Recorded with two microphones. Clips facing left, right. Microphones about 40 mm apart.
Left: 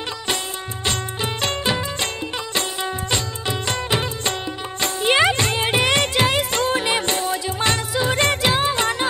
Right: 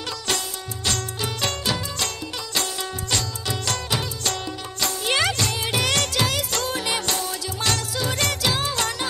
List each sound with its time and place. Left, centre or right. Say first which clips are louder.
0.8 s music: left 2 dB; left